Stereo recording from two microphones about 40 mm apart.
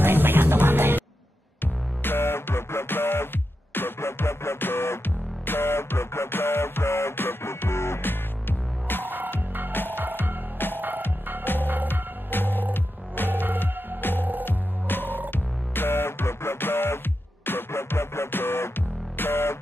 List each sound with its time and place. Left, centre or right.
0.0 s music: right
1.6 s music: left
11.6 s music: right
11.9 s music: left
13.3 s music: right
13.6 s music: left